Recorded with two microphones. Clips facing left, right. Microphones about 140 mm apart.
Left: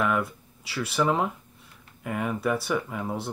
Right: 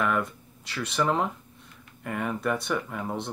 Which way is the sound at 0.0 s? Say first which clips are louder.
Left 1 dB; 5° left (ahead or behind).